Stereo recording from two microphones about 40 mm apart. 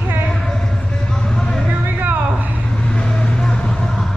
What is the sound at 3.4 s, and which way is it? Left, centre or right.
Vehicle, centre.